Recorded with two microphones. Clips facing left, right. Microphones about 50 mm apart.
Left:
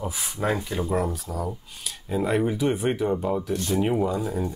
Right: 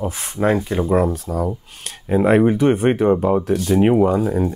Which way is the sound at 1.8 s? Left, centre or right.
Right.